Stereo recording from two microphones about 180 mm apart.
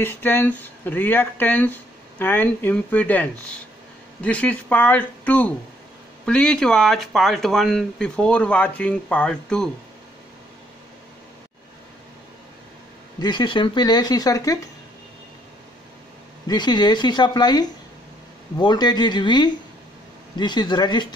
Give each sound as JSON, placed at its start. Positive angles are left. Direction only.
{"t": 0.0, "sound": "speech", "side_deg": 10}
{"t": 13.2, "sound": "speech", "side_deg": 25}
{"t": 16.4, "sound": "speech", "side_deg": 25}